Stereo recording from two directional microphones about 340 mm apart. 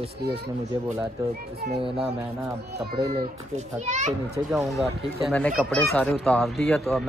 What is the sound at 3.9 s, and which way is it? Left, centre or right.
Speech, centre.